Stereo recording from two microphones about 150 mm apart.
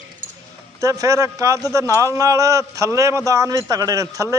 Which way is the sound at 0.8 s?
20° right (ahead or behind).